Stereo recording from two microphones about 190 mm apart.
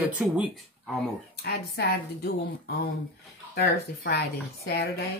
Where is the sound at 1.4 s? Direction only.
55° left (ahead or behind).